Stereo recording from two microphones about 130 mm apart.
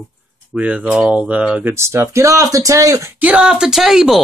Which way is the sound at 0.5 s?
10° right (ahead or behind).